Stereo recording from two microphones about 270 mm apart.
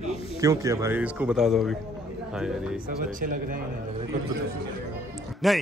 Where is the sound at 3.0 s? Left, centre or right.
Right.